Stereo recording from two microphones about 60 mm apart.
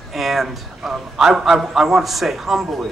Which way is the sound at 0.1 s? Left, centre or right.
Centre.